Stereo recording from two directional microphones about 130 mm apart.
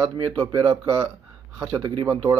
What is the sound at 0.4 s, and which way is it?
Speech, 30° right (ahead or behind).